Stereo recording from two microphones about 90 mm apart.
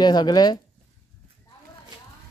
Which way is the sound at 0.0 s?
50° left (ahead or behind).